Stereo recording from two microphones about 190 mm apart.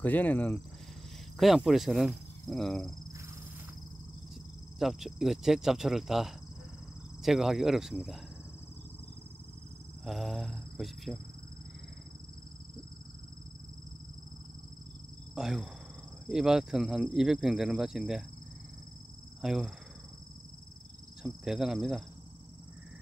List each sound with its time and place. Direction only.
0.0 s speech: 10° left (ahead or behind)
1.4 s speech: centre (ahead or behind)
4.7 s speech: centre (ahead or behind)
10.0 s speech: centre (ahead or behind)
15.3 s speech: centre (ahead or behind)
19.4 s speech: centre (ahead or behind)
21.2 s speech: 5° right (ahead or behind)